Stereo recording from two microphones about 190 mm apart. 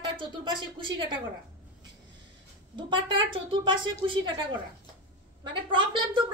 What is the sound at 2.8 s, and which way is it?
Speech, 25° right (ahead or behind).